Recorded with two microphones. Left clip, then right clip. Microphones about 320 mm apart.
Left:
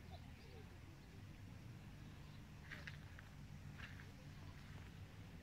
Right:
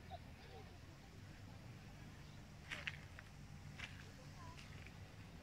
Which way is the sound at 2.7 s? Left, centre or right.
Centre.